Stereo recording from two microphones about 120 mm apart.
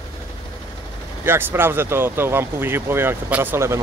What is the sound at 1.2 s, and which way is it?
Speech, 20° right (ahead or behind).